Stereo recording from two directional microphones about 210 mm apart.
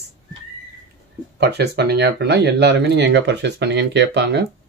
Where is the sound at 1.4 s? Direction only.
50° right (ahead or behind).